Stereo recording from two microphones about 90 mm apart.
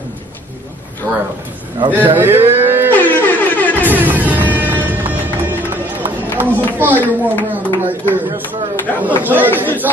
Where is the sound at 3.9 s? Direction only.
20° right (ahead or behind).